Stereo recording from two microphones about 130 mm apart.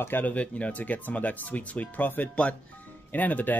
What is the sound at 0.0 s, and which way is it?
Speech, 15° left (ahead or behind).